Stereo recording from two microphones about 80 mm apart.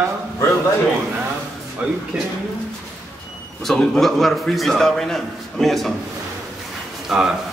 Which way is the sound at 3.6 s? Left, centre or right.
Centre.